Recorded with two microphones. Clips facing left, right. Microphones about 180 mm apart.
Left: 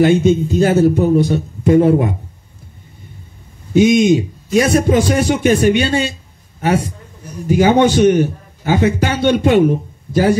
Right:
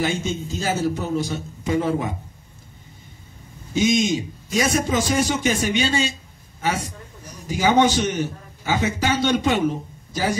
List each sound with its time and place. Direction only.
0.0 s a man's voice: 55° left (ahead or behind)
3.7 s a man's voice: 60° left (ahead or behind)